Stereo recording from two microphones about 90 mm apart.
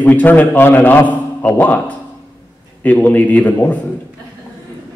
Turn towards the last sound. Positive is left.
turn(degrees=20)  # may be behind; listen again after turning